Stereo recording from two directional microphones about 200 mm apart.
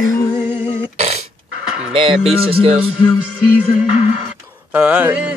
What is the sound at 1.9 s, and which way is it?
Speech, 30° right (ahead or behind).